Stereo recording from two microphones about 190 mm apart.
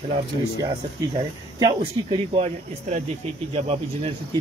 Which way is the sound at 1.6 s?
25° right (ahead or behind).